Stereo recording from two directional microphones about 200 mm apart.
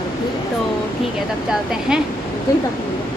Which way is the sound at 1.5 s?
Centre (ahead or behind).